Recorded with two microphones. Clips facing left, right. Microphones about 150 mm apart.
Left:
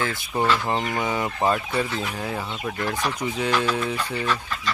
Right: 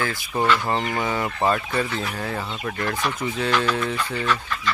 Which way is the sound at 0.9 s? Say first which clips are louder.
Even; 15° left (ahead or behind).